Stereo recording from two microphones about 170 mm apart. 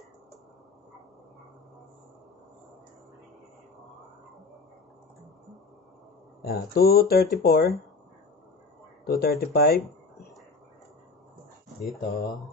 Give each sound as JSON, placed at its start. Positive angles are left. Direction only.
{"t": 6.4, "sound": "speech", "side_deg": 65}
{"t": 9.0, "sound": "speech", "side_deg": 65}
{"t": 11.8, "sound": "speech", "side_deg": 0}